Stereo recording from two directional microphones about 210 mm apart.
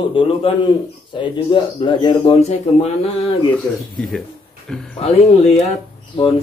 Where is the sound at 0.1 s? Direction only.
25° left (ahead or behind).